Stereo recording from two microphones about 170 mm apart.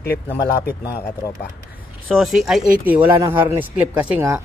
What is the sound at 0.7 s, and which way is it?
Speech, 20° left (ahead or behind).